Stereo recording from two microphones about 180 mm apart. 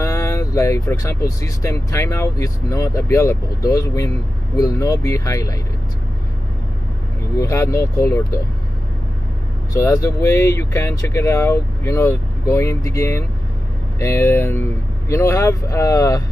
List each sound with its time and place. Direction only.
0.0 s speech: 15° left (ahead or behind)
7.3 s speech: 15° left (ahead or behind)
9.8 s speech: 15° left (ahead or behind)